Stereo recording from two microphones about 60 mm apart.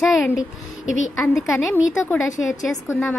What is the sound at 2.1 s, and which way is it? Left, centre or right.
Speech, centre.